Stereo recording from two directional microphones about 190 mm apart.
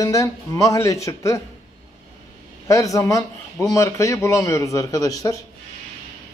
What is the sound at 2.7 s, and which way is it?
A man's voice, 15° left (ahead or behind).